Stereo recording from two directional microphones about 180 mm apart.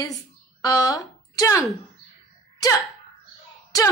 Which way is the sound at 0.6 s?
20° left (ahead or behind).